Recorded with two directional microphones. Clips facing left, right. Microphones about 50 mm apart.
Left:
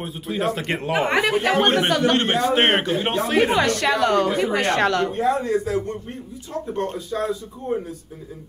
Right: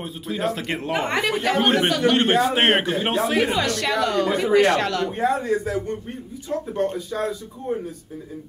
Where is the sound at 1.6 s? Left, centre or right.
Centre.